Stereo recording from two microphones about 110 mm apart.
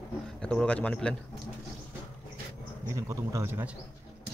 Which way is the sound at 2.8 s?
25° right (ahead or behind).